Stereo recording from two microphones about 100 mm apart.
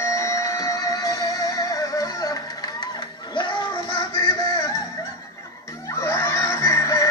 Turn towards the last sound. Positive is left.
turn(degrees=30)  # may be behind; listen again after turning